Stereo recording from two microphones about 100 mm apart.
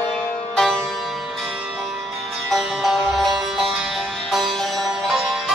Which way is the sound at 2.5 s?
Centre (ahead or behind).